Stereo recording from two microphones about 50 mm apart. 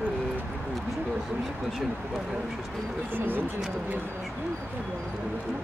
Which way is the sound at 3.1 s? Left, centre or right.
Right.